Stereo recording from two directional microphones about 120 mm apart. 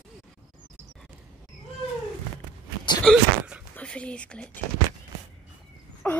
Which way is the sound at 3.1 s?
5° left (ahead or behind).